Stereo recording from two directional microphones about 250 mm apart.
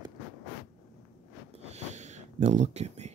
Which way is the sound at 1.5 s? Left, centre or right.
Right.